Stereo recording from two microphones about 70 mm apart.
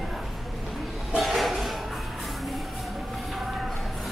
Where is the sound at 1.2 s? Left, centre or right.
Centre.